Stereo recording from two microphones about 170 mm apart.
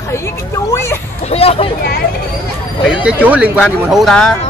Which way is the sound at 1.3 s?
35° left (ahead or behind).